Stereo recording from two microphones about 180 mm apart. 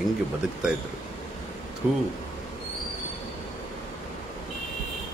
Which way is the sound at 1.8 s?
10° right (ahead or behind).